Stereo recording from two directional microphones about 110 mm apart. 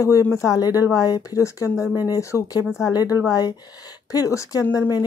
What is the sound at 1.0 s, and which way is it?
Speech, 35° left (ahead or behind).